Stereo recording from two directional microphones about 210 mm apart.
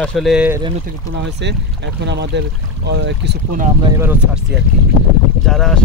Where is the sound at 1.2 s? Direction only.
55° right (ahead or behind).